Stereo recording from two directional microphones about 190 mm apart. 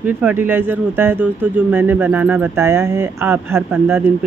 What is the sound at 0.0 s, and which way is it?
Speech, 10° right (ahead or behind).